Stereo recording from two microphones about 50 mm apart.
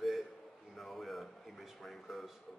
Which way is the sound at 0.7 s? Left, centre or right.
Centre.